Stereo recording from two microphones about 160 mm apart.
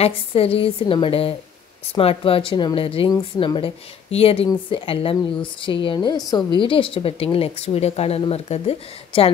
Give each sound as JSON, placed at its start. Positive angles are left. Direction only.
{"t": 0.0, "sound": "a woman's voice", "side_deg": 35}